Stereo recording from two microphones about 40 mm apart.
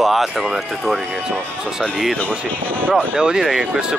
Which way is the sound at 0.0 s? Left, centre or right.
Centre.